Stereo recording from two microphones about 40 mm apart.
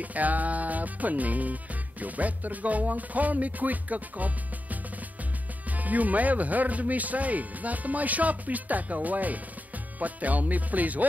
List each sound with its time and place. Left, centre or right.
0.0 s music: right